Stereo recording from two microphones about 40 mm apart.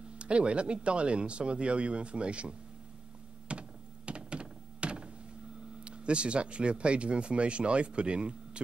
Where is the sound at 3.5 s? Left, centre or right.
Right.